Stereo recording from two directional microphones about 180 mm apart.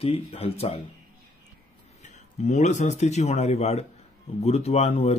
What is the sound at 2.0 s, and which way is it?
Speech, 40° left (ahead or behind).